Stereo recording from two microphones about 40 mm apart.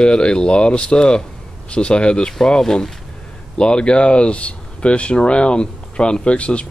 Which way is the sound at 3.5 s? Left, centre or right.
Left.